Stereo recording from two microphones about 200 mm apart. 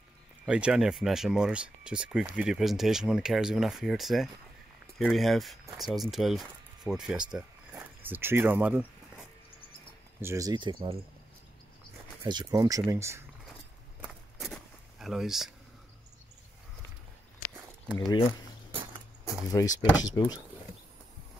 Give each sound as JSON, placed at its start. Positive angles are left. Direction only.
{"t": 0.5, "sound": "speech", "side_deg": -5}
{"t": 7.7, "sound": "a sound", "side_deg": -10}
{"t": 10.2, "sound": "speech", "side_deg": -15}
{"t": 12.2, "sound": "speech", "side_deg": -20}
{"t": 14.0, "sound": "walk", "side_deg": 0}
{"t": 17.9, "sound": "speech", "side_deg": 20}
{"t": 18.7, "sound": "a sound", "side_deg": -25}
{"t": 19.5, "sound": "speech", "side_deg": 20}